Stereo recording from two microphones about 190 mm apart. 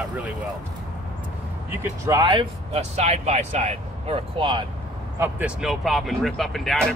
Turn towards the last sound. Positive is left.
turn(degrees=0)  # may be behind; listen again after turning